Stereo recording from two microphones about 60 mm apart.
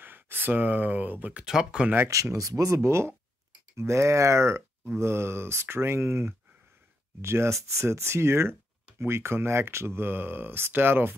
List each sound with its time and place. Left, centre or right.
0.0 s speech: right
1.4 s speech: centre
2.3 s speech: right